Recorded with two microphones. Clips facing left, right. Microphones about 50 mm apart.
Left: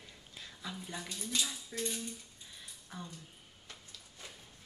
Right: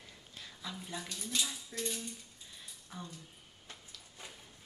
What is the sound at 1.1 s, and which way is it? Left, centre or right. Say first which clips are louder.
Speech: left 1 dB; centre.